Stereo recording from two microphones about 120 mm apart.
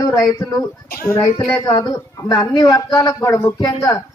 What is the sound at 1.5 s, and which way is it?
A man's voice, 35° left (ahead or behind).